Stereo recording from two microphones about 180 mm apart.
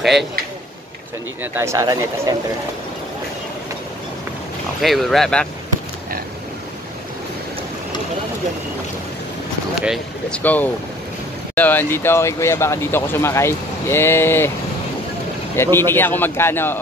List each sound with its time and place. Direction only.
1.4 s speech: 10° right (ahead or behind)
4.8 s speech: centre (ahead or behind)
9.8 s speech: 5° right (ahead or behind)
10.4 s speech: 10° left (ahead or behind)
15.5 s speech: 15° left (ahead or behind)